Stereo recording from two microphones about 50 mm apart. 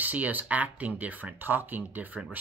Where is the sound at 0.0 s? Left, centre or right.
Right.